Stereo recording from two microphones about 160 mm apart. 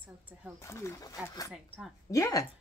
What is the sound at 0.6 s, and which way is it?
Speech, 15° left (ahead or behind).